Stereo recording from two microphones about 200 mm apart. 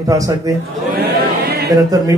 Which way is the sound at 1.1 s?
55° right (ahead or behind).